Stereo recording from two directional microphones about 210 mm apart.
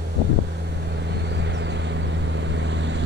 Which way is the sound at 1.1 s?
55° right (ahead or behind).